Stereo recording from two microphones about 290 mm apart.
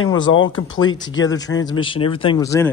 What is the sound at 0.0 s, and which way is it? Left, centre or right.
Speech, left.